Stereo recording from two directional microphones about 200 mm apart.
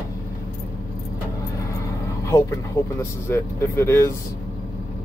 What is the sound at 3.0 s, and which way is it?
Speech, 10° left (ahead or behind).